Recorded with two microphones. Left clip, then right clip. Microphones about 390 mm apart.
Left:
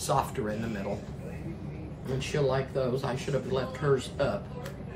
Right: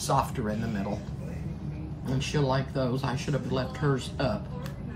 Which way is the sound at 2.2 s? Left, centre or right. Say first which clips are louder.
Even; centre.